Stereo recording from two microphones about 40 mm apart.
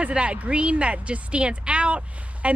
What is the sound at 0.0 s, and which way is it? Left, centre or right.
Speech, right.